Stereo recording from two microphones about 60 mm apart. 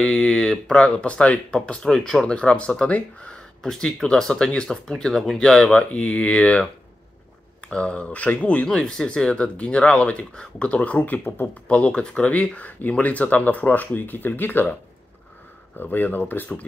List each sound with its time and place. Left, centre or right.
0.0 s speech: centre
1.8 s speech: centre
5.9 s speech: left
8.6 s speech: centre; by 11.4 s left
11.4 s speech: left